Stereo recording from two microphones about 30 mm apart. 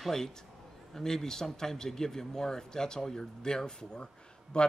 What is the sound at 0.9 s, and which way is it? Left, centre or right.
Speech, centre.